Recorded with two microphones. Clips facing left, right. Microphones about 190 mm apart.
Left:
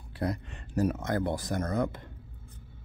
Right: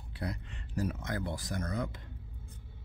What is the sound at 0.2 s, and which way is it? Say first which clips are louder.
Speech: left 7 dB; 45° left (ahead or behind).